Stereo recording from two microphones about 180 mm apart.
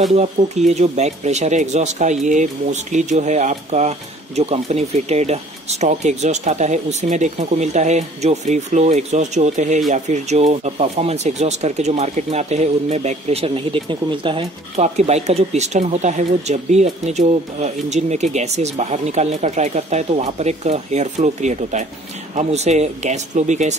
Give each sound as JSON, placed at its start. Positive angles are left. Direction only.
{"t": 0.1, "sound": "speech", "side_deg": -40}